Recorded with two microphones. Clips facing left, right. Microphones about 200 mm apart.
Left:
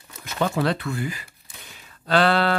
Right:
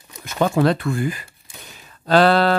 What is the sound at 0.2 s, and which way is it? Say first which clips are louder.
Speech: right 5 dB; 45° right (ahead or behind).